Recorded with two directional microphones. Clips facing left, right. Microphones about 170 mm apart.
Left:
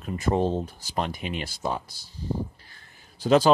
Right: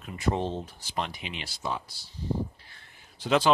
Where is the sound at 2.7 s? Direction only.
40° left (ahead or behind).